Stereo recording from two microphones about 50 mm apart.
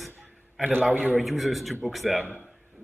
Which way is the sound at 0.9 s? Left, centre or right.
Right.